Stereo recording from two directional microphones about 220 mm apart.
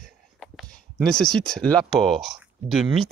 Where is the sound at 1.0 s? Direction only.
Centre (ahead or behind).